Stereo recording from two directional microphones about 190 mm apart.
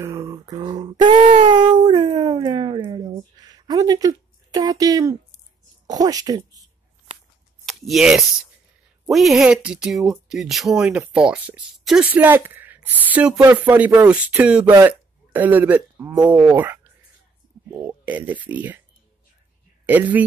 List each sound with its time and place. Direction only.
0.0 s a sound: 15° right (ahead or behind)
0.6 s speech: 25° right (ahead or behind)
1.1 s child singing: 40° right (ahead or behind)
1.5 s a sound: 25° right (ahead or behind)
5.9 s speech: 20° right (ahead or behind)
7.6 s speech: centre (ahead or behind)
19.9 s speech: 10° right (ahead or behind)